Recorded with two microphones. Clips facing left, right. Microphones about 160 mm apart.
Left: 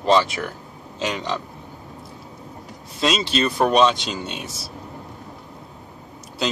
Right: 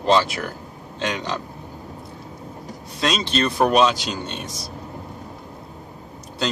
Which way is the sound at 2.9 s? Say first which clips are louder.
Left 1 dB; centre (ahead or behind).